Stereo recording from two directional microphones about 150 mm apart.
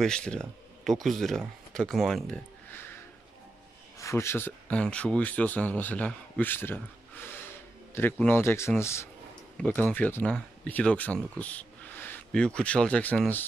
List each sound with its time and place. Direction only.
0.0 s speech: 5° left (ahead or behind)
4.0 s speech: 20° left (ahead or behind)
7.9 s speech: 15° left (ahead or behind)